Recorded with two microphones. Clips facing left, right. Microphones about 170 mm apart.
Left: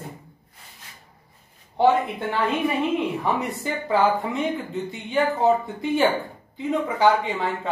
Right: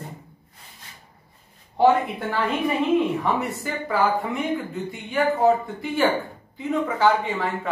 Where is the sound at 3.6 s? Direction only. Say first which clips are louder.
Left 2 dB; 20° left (ahead or behind).